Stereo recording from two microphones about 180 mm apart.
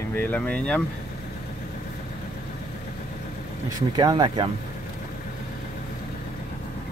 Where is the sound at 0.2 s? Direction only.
10° left (ahead or behind).